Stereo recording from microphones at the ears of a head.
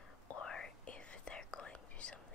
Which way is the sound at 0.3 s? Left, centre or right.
Left.